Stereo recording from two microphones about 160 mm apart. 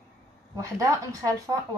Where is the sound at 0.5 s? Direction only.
20° right (ahead or behind).